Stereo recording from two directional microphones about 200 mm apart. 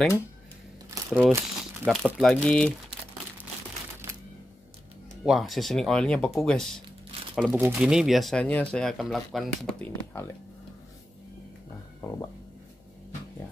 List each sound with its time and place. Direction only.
0.8 s speech: 10° right (ahead or behind)
1.9 s speech: 5° left (ahead or behind)
5.2 s speech: centre (ahead or behind)